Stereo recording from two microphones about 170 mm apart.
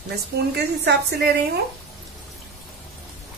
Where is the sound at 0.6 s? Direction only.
75° right (ahead or behind).